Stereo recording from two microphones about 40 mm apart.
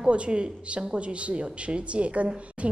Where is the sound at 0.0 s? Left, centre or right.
Right.